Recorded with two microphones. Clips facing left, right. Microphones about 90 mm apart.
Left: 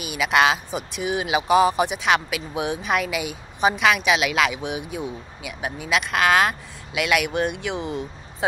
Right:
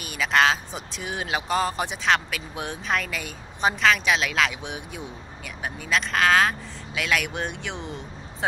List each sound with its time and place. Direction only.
0.0 s speech: 5° left (ahead or behind)